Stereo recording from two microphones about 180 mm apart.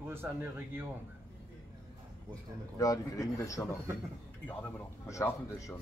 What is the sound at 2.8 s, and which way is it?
Speech, 20° left (ahead or behind).